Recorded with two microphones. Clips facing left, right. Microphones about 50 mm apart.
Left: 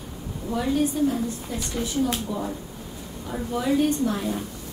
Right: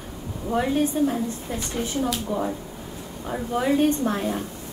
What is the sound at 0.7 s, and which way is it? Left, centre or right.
A woman's voice, right.